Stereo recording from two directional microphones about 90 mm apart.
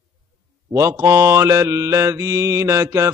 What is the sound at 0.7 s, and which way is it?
Mantra, 30° right (ahead or behind).